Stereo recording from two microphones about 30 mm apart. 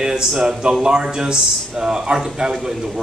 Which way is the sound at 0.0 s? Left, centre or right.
Centre.